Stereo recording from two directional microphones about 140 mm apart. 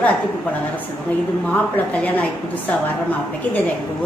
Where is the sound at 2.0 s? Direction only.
10° left (ahead or behind).